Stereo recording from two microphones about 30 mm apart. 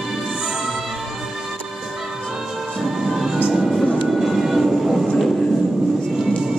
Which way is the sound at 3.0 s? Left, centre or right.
Centre.